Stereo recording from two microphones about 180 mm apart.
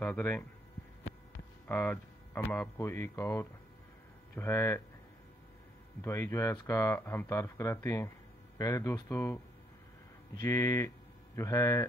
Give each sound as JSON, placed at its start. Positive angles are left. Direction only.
{"t": 0.0, "sound": "speech", "side_deg": 10}
{"t": 1.7, "sound": "speech", "side_deg": 10}
{"t": 6.0, "sound": "speech", "side_deg": 15}
{"t": 10.4, "sound": "speech", "side_deg": 20}